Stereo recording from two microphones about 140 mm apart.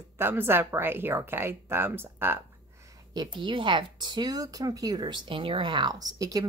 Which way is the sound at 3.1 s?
30° right (ahead or behind).